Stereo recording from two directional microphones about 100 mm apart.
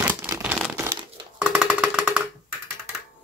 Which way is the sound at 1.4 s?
10° right (ahead or behind).